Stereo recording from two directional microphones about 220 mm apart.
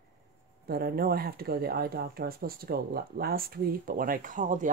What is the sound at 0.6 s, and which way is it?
Speech, 45° right (ahead or behind).